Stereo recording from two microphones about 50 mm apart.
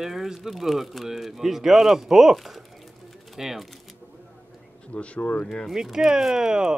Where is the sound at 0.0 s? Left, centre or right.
Centre.